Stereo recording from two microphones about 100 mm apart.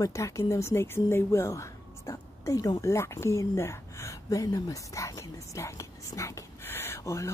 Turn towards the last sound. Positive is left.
turn(degrees=30)  # may be behind; listen again after turning